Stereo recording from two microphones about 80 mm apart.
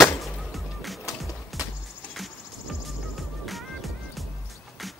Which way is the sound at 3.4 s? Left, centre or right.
Centre.